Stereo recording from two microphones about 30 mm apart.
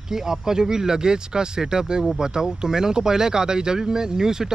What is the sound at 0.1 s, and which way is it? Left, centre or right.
Speech, centre.